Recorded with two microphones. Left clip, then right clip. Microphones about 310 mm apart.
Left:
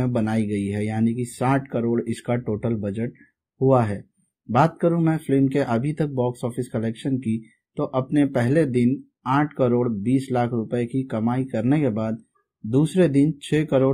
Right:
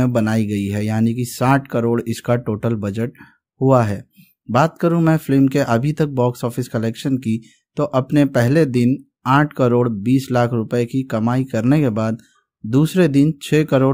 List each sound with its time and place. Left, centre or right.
0.0 s speech: right